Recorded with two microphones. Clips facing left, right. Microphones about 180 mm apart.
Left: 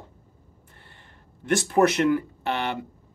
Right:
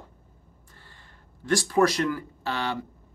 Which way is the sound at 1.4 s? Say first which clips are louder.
Left 2 dB; 20° left (ahead or behind).